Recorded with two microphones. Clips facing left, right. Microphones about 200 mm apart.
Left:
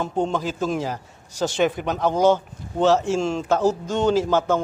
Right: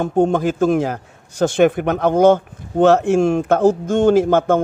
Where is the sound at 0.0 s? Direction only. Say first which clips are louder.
Right 8 dB; 50° right (ahead or behind).